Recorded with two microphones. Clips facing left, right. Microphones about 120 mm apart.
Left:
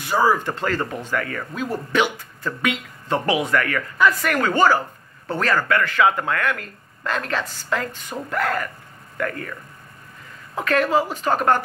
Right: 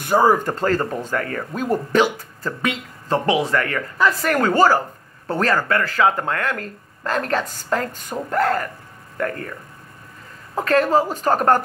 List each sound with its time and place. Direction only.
0.0 s speech: 50° right (ahead or behind)
10.5 s speech: 40° right (ahead or behind)